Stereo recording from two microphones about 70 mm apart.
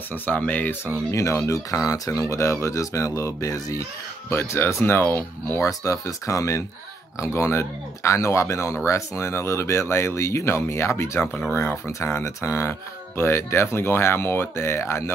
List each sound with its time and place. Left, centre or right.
0.1 s speech: left
1.1 s speech: left
4.3 s speech: left
5.7 s speech: left